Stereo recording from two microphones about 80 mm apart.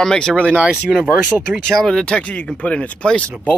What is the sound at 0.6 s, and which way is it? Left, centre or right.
Speech, centre.